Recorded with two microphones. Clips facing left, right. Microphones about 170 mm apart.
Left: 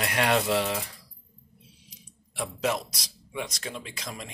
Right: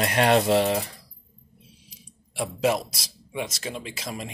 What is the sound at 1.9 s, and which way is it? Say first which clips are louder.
Speech: right 3 dB; 10° right (ahead or behind).